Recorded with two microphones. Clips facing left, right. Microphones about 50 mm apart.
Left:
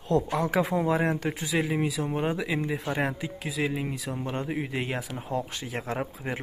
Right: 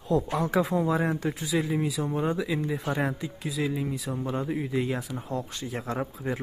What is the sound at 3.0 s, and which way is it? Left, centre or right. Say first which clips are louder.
Speech: even; left.